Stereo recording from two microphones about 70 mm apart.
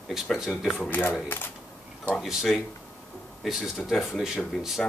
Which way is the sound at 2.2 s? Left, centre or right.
Centre.